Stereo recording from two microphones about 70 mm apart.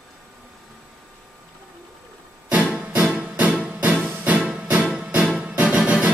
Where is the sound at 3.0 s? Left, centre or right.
Centre.